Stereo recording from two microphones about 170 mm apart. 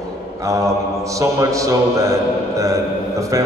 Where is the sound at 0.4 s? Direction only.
20° right (ahead or behind).